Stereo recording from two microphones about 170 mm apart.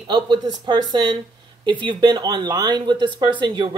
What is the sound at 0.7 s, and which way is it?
Speech, 25° right (ahead or behind).